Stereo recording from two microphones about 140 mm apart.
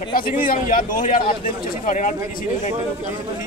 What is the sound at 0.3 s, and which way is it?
A man's voice, 80° left.